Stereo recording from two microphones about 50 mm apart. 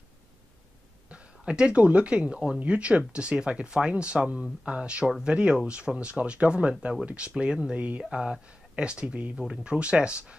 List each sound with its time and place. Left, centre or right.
1.1 s speech: centre